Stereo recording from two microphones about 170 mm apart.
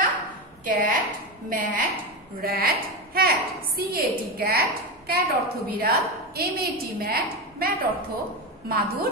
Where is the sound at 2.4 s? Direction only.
60° right (ahead or behind).